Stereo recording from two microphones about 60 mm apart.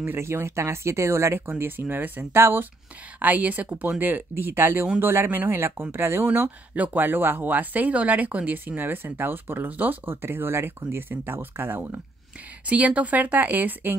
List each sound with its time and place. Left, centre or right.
0.2 s speech: right
1.6 s speech: right
3.2 s speech: right
6.7 s speech: right
12.6 s speech: right